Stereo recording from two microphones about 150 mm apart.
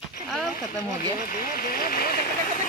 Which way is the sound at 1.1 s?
70° left (ahead or behind).